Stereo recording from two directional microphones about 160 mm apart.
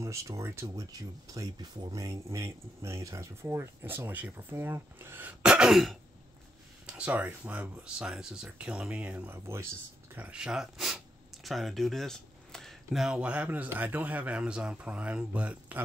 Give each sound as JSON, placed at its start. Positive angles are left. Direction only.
{"t": 0.0, "sound": "speech", "side_deg": -20}